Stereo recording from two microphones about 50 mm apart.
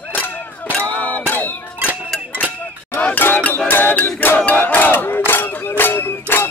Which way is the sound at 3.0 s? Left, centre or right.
Left.